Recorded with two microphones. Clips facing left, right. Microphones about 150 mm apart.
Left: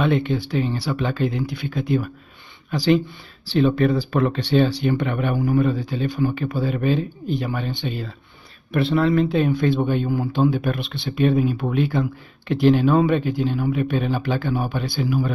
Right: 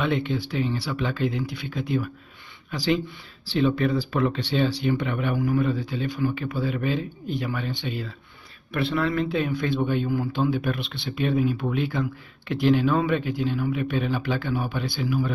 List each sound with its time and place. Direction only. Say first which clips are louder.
0.0 s speech: left 4 dB; 50° left (ahead or behind)
5.4 s a man's voice: left 4 dB; 40° left (ahead or behind)
10.5 s speech: left 2 dB; 45° left (ahead or behind)